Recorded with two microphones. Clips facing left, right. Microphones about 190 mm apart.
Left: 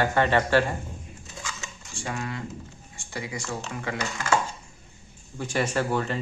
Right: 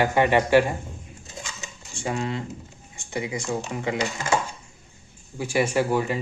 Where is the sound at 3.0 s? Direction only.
20° right (ahead or behind).